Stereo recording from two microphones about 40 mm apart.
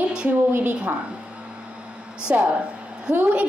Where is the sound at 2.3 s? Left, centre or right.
Right.